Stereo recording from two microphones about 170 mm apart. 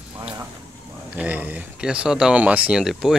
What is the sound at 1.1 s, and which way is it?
Speech, 10° right (ahead or behind).